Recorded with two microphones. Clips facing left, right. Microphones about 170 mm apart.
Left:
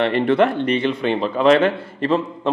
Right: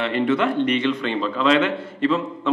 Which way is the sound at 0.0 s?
55° left (ahead or behind).